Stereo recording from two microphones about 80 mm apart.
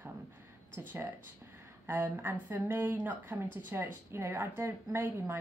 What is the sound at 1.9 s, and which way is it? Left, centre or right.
Speech, right.